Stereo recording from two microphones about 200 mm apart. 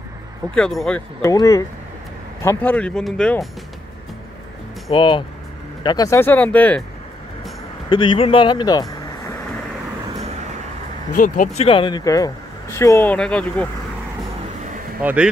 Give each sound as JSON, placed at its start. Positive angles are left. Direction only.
{"t": 0.6, "sound": "speech", "side_deg": 0}
{"t": 1.2, "sound": "speech", "side_deg": 15}
{"t": 4.9, "sound": "speech", "side_deg": 25}
{"t": 7.9, "sound": "speech", "side_deg": 25}
{"t": 11.1, "sound": "speech", "side_deg": 40}
{"t": 15.0, "sound": "speech", "side_deg": -5}